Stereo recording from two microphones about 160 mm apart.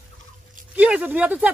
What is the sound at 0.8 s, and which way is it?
Speech, 10° right (ahead or behind).